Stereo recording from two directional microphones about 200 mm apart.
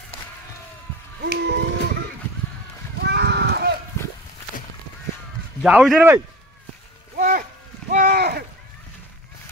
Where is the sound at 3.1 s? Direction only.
60° right (ahead or behind).